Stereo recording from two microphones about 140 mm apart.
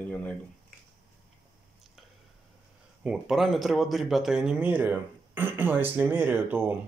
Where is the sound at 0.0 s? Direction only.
10° left (ahead or behind).